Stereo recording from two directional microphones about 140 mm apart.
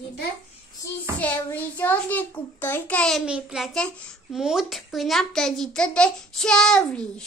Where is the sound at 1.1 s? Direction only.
10° left (ahead or behind).